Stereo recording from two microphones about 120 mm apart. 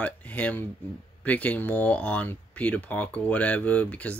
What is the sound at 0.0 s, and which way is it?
Speech, 10° left (ahead or behind).